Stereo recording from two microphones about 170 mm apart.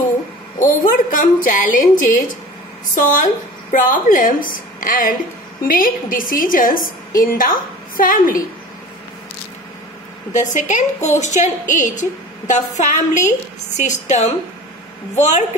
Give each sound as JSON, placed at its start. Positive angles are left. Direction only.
{"t": 0.6, "sound": "a woman's voice", "side_deg": 50}
{"t": 10.3, "sound": "a woman's voice", "side_deg": 45}